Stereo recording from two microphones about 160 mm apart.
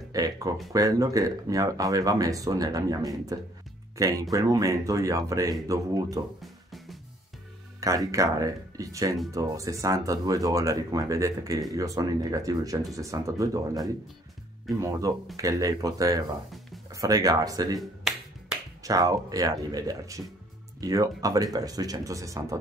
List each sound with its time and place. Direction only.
0.1 s speech: 20° right (ahead or behind)
6.4 s music: centre (ahead or behind)
7.8 s speech: 20° right (ahead or behind)
17.7 s finger snapping: centre (ahead or behind)
18.8 s speech: 20° right (ahead or behind)